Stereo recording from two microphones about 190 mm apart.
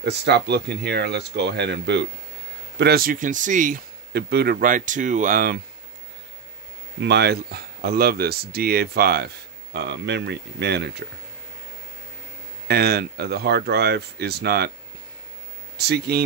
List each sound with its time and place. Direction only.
0.0 s speech: 65° right (ahead or behind)
2.8 s speech: 50° right (ahead or behind)
7.0 s speech: 60° right (ahead or behind)
12.6 s speech: 55° right (ahead or behind)
15.8 s speech: 60° right (ahead or behind)